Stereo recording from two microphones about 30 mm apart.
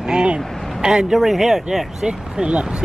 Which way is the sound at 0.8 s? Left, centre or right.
Centre.